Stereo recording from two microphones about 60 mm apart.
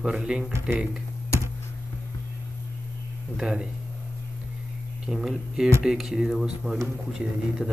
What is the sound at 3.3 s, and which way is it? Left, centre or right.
Speech, centre.